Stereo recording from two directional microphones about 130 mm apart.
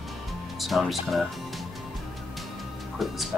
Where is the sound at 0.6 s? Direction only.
Centre (ahead or behind).